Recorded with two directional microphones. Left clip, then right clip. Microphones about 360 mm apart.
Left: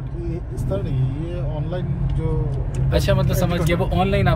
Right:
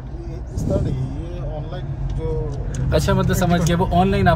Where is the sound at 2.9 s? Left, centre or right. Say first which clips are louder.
Right 1 dB; centre.